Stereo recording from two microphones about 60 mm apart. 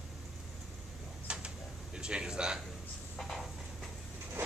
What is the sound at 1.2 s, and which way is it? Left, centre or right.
Tick-tock, centre.